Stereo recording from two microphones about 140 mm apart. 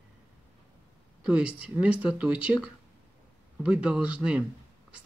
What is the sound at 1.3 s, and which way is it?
Speech, 10° right (ahead or behind).